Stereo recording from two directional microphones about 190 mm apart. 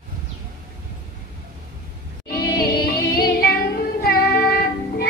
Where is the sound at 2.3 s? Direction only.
55° left (ahead or behind).